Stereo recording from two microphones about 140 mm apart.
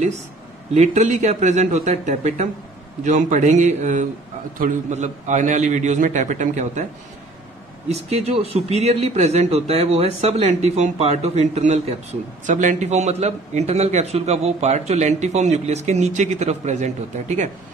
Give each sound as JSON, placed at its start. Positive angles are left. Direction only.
{"t": 0.7, "sound": "a man's voice", "side_deg": -60}
{"t": 7.9, "sound": "a man's voice", "side_deg": -50}